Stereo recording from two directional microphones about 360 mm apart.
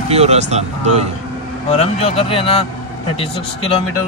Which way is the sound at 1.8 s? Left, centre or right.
Centre.